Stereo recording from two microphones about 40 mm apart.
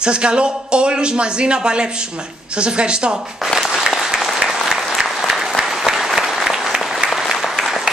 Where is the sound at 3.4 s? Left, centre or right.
Centre.